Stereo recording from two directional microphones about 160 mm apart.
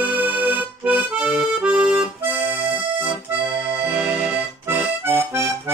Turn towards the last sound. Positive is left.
turn(degrees=-15)  # may be behind; listen again after turning